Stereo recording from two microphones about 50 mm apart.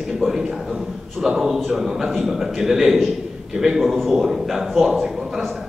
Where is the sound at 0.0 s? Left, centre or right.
Centre.